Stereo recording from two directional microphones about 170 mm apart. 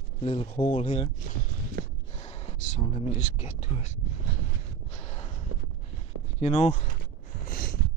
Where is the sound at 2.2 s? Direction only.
35° left (ahead or behind).